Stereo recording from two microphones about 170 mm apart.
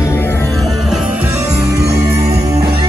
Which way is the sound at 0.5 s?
Centre (ahead or behind).